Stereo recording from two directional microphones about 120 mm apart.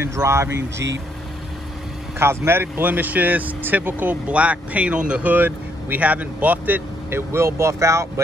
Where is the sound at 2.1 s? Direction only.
20° right (ahead or behind).